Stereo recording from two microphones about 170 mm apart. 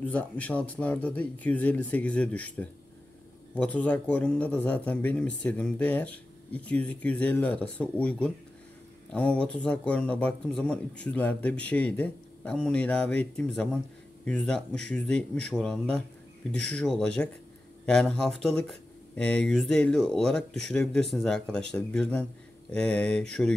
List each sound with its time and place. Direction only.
0.0 s speech: 10° left (ahead or behind)